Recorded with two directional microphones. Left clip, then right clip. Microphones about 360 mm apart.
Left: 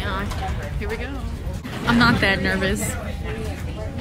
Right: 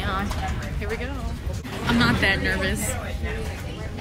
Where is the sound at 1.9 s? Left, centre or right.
Centre.